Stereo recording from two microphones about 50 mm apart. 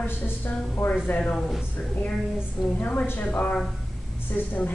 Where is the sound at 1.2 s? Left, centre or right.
Left.